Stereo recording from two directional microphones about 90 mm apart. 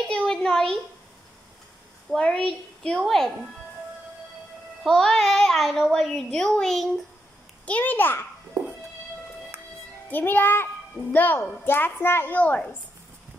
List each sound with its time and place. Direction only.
0.1 s a sound: 5° left (ahead or behind)
2.1 s a woman's voice: 10° left (ahead or behind)
4.8 s a child's voice: 5° left (ahead or behind)
7.6 s a child's voice: 15° left (ahead or behind)
8.6 s music: 50° right (ahead or behind)
10.0 s a child's voice: 20° left (ahead or behind)